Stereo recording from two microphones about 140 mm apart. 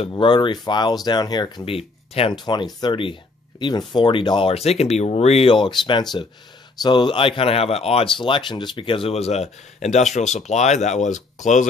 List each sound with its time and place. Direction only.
0.1 s speech: 35° left (ahead or behind)
1.8 s speech: 40° left (ahead or behind); by 11.2 s 60° left (ahead or behind)